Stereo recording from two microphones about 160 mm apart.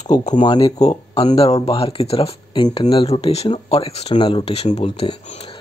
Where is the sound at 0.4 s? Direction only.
30° left (ahead or behind).